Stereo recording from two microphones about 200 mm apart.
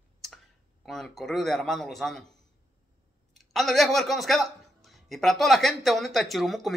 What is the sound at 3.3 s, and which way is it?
Speech, centre (ahead or behind).